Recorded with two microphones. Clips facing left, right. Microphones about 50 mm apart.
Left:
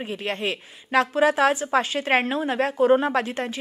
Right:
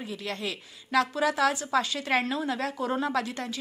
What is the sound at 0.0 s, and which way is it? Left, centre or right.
A woman's voice, left.